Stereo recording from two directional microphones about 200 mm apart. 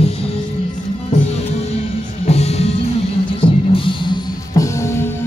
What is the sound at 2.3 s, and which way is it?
Music, 30° left (ahead or behind).